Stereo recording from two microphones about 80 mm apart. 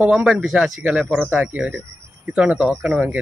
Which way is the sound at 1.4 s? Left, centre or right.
Centre.